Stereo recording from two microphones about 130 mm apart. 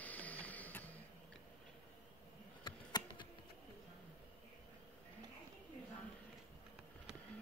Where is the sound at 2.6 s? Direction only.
35° left (ahead or behind).